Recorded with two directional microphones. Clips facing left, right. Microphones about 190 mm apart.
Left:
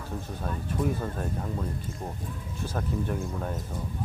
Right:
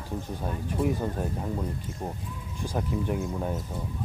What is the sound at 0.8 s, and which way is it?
Speech, 25° right (ahead or behind).